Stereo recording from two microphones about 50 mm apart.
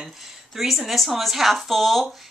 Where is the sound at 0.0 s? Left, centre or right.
Centre.